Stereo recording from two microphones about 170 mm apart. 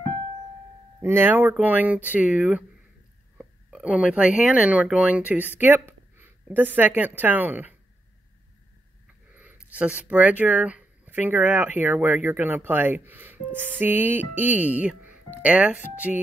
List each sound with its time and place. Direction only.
1.0 s a woman's voice: 10° right (ahead or behind)
9.4 s speech: 10° right (ahead or behind)
16.1 s music: 5° right (ahead or behind)